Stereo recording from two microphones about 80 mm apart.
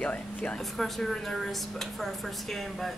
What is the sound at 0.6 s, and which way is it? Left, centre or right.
A woman's voice, centre.